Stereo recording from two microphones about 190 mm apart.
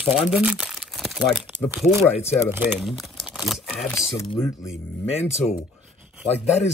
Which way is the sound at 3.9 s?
15° left (ahead or behind).